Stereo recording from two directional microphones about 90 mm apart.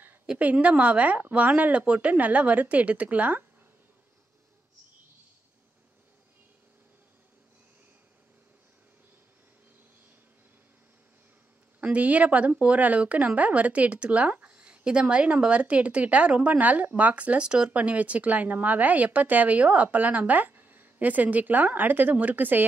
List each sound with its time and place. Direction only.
0.3 s speech: 15° right (ahead or behind)
11.8 s speech: 15° right (ahead or behind)